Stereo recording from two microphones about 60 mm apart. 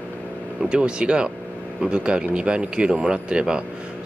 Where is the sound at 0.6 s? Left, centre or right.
Centre.